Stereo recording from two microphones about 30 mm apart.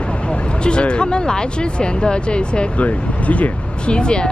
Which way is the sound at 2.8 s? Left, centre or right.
Left.